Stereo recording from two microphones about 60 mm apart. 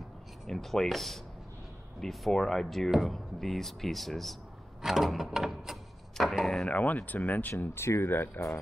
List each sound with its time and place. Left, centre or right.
0.5 s speech: centre
6.7 s speech: left
7.5 s speech: left